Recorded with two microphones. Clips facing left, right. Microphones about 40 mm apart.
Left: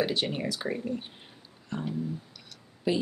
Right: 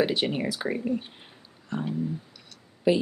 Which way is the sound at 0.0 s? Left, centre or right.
Centre.